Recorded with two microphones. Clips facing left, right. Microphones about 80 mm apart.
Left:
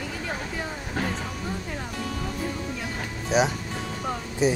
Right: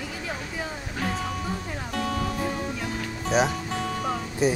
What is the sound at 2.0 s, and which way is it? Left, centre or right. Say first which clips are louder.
Music: right 6 dB; right.